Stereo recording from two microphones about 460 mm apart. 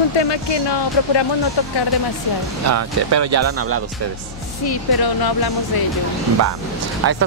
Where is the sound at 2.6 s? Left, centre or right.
Right.